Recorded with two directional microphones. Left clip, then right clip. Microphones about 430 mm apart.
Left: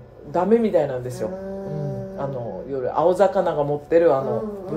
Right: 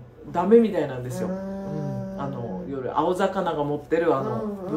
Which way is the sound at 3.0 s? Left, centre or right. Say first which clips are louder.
Left 6 dB; centre.